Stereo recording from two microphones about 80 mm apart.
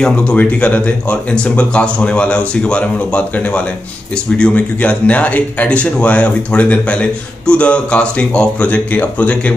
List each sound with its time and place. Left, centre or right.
0.0 s speech: centre